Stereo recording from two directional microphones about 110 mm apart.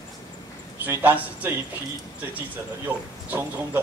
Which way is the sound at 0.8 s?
15° right (ahead or behind).